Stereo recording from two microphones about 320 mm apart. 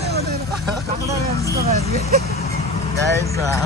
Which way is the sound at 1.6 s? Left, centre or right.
Centre.